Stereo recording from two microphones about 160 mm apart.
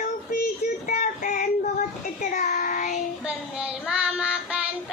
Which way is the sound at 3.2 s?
5° right (ahead or behind).